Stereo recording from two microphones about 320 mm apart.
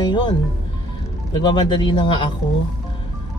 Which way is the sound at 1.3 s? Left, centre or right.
Centre.